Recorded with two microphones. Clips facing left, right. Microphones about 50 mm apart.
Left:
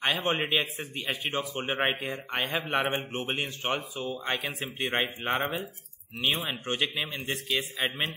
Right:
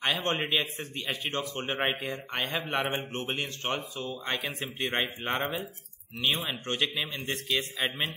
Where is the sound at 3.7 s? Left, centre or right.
Centre.